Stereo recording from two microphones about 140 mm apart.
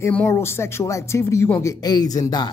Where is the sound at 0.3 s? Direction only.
20° left (ahead or behind).